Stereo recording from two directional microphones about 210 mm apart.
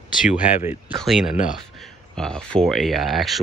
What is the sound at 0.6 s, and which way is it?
Speech, 10° right (ahead or behind).